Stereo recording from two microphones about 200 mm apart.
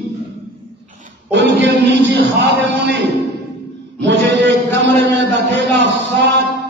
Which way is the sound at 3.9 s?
60° right (ahead or behind).